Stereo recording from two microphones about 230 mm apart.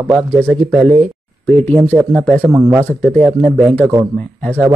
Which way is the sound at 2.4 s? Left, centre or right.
Centre.